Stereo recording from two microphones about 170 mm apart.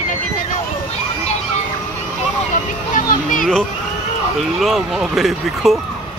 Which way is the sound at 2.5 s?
50° left (ahead or behind).